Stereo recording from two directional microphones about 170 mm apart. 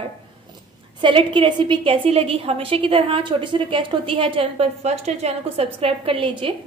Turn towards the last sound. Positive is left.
turn(degrees=-35)  # may be behind; listen again after turning